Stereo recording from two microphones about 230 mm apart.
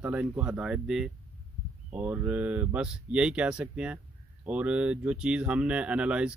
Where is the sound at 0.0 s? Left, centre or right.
Centre.